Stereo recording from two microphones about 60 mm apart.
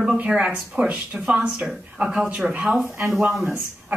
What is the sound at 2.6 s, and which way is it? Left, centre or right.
Speech, centre.